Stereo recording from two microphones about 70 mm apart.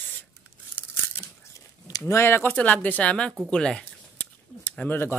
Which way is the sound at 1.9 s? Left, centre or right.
Left.